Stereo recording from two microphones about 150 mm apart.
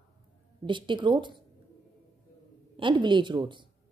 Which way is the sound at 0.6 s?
35° right (ahead or behind).